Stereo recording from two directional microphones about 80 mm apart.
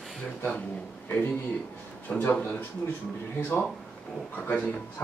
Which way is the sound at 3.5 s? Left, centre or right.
Left.